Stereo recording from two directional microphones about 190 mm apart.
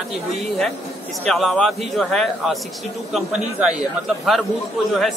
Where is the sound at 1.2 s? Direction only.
Centre (ahead or behind).